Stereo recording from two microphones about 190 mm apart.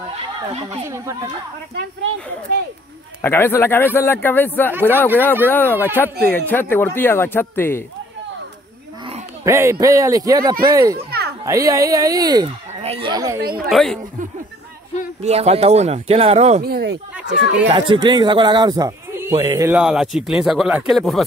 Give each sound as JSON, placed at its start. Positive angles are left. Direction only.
{"t": 0.8, "sound": "speech", "side_deg": -15}
{"t": 1.8, "sound": "speech", "side_deg": -60}
{"t": 3.2, "sound": "speech", "side_deg": 10}
{"t": 9.4, "sound": "speech", "side_deg": -15}
{"t": 12.7, "sound": "speech", "side_deg": -30}
{"t": 13.4, "sound": "speech", "side_deg": -50}
{"t": 13.7, "sound": "speech", "side_deg": 0}
{"t": 15.2, "sound": "speech", "side_deg": -35}
{"t": 16.6, "sound": "speech", "side_deg": -55}
{"t": 17.3, "sound": "speech", "side_deg": -30}
{"t": 19.7, "sound": "speech", "side_deg": -5}